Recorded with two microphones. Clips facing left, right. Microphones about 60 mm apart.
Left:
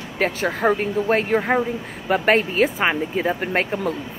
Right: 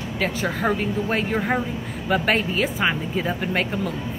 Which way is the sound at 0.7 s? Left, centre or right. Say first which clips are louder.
Left 4 dB; left.